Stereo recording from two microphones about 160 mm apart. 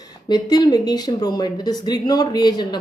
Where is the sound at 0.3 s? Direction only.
25° left (ahead or behind).